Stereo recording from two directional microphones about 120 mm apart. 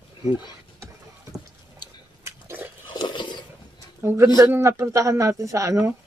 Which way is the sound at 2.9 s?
40° left (ahead or behind).